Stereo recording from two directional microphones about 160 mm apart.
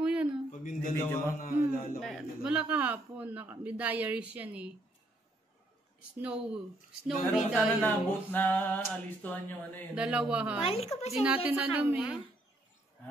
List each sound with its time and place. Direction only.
0.0 s a sound: 5° right (ahead or behind)
0.5 s a sound: 55° left (ahead or behind)
1.4 s speech: 60° left (ahead or behind)
2.0 s a man's voice: centre (ahead or behind)
6.2 s a man's voice: 5° right (ahead or behind)
7.8 s a sound: 10° left (ahead or behind)
9.9 s a man's voice: 5° right (ahead or behind)
10.6 s a woman's voice: 40° left (ahead or behind)
11.2 s a man's voice: 10° right (ahead or behind)